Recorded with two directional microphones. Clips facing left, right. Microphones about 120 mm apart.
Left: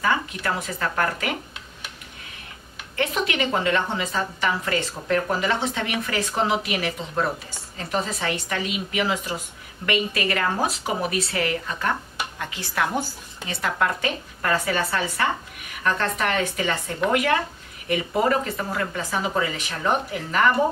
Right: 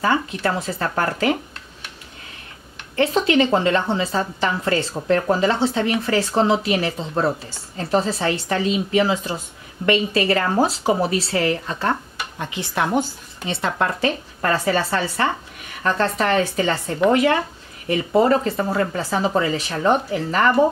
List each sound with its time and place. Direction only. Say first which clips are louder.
0.0 s a woman's voice: right 4 dB; 30° right (ahead or behind)
3.0 s a woman's voice: right 7 dB; 30° right (ahead or behind)
12.4 s a woman's voice: right 3 dB; 20° right (ahead or behind)